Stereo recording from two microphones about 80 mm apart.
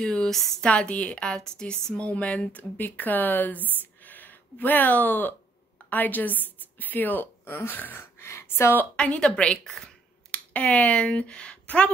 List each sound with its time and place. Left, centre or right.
0.0 s a woman's voice: centre
0.7 s speech: centre
8.9 s a woman's voice: centre